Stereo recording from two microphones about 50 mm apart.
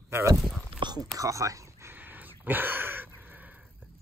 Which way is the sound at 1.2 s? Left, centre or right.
Right.